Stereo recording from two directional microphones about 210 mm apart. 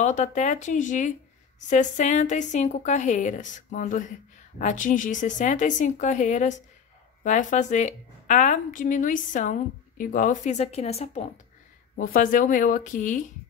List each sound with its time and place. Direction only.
0.0 s a woman's voice: 35° left (ahead or behind)